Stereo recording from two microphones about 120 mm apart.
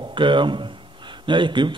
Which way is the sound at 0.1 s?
45° right (ahead or behind).